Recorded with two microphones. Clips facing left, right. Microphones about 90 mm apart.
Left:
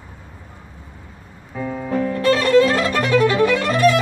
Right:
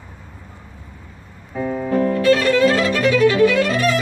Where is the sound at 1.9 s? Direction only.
45° right (ahead or behind).